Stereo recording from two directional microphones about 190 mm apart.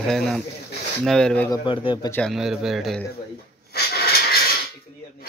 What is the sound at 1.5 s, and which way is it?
Speech, 25° left (ahead or behind).